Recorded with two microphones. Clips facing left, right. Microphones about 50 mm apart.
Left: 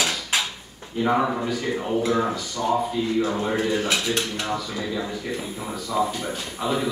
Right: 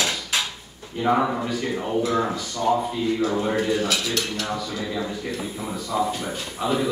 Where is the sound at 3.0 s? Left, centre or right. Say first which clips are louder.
Right 1 dB; centre.